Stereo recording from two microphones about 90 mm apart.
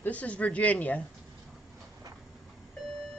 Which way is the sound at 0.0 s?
15° left (ahead or behind).